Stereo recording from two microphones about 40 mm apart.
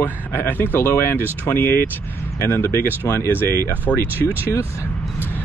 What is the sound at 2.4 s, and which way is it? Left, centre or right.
Speech, left.